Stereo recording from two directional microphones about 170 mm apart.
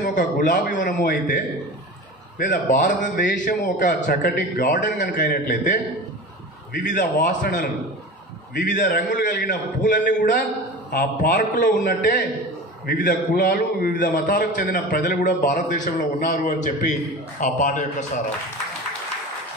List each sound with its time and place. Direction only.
0.0 s a man's voice: 50° left (ahead or behind)
6.9 s a man's voice: 50° left (ahead or behind)